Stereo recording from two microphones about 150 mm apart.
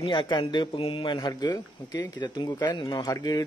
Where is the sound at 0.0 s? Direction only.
35° left (ahead or behind).